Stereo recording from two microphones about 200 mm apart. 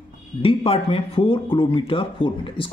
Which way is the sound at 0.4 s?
30° left (ahead or behind).